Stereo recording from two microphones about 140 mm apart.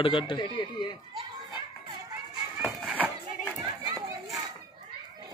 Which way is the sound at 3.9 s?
25° right (ahead or behind).